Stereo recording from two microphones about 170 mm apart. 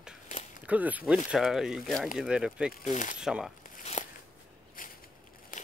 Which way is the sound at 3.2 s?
5° right (ahead or behind).